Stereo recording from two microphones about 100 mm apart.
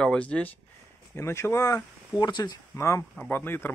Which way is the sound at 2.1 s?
45° left (ahead or behind).